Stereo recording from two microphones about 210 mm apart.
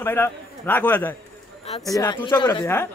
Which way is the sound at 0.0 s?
10° left (ahead or behind).